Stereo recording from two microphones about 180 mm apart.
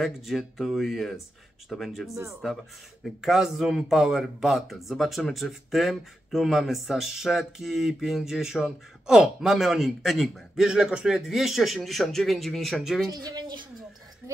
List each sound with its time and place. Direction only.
0.0 s a man's voice: centre (ahead or behind)
13.1 s speech: 20° right (ahead or behind)